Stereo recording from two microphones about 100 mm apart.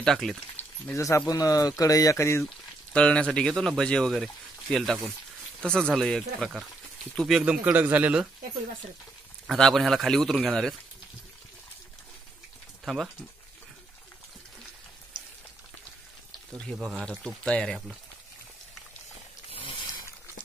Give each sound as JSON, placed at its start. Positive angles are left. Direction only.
{"t": 0.0, "sound": "a man's voice", "side_deg": 5}
{"t": 0.9, "sound": "speech", "side_deg": 30}
{"t": 2.9, "sound": "a man's voice", "side_deg": 10}
{"t": 7.4, "sound": "speech", "side_deg": -15}
{"t": 9.5, "sound": "a man's voice", "side_deg": 0}
{"t": 12.8, "sound": "speech", "side_deg": 0}
{"t": 17.4, "sound": "speech", "side_deg": 10}
{"t": 19.5, "sound": "a sound", "side_deg": 70}